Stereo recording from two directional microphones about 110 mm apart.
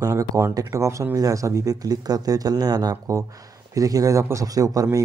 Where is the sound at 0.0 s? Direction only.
30° right (ahead or behind).